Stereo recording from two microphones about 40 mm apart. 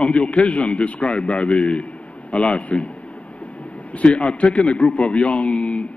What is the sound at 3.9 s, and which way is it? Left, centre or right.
Speech, left.